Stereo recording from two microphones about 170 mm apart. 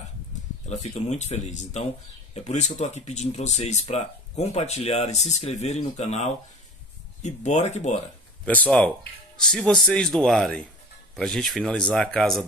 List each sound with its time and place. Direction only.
1.0 s speech: 40° left (ahead or behind)
8.5 s speech: 10° left (ahead or behind)